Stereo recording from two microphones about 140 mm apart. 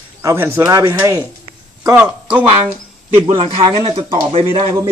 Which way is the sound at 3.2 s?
40° right (ahead or behind).